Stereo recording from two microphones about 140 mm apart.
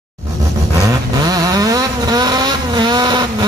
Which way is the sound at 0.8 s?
25° right (ahead or behind).